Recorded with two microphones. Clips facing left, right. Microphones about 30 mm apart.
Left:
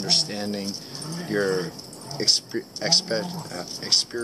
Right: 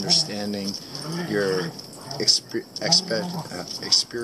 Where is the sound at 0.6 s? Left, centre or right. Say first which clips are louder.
Right 1 dB; right.